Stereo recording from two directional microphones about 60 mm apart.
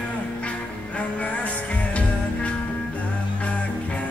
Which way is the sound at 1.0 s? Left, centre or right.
Left.